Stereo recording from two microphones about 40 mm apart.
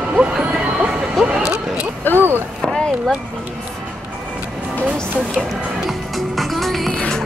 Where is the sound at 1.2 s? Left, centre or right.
Centre.